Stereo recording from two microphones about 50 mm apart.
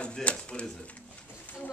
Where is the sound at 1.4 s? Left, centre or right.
Left.